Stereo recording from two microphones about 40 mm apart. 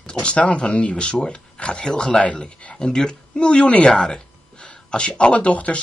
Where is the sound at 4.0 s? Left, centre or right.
Centre.